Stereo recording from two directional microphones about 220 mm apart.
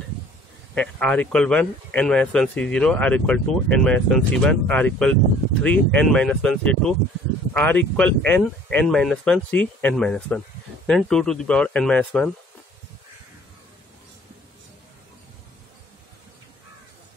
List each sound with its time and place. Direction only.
0.7 s speech: 5° left (ahead or behind)